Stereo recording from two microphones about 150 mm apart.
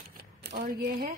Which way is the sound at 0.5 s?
90° right.